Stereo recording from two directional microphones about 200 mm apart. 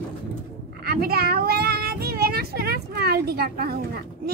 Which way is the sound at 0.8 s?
50° right (ahead or behind).